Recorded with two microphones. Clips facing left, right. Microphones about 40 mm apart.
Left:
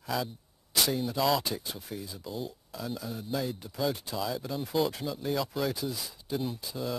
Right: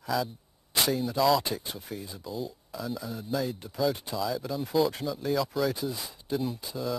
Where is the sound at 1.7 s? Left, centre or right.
Centre.